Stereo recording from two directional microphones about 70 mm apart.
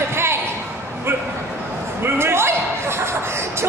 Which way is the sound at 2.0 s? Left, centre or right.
Right.